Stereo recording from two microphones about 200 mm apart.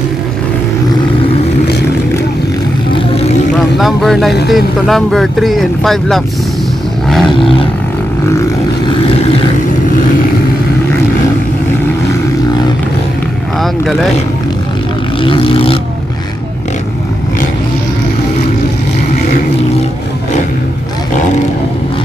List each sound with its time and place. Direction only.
3.5 s vehicle: centre (ahead or behind)
4.5 s speech: centre (ahead or behind)
7.1 s a sound: centre (ahead or behind)
13.6 s vehicle: centre (ahead or behind)
15.2 s vehicle: 25° left (ahead or behind)